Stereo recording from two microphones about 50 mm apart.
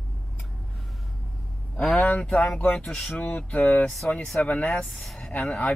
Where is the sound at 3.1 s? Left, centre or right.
Left.